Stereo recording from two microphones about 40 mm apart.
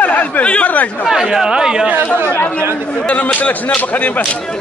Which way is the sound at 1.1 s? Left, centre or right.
Centre.